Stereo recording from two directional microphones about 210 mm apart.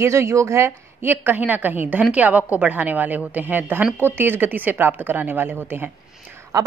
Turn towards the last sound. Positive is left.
turn(degrees=-10)  # may be behind; listen again after turning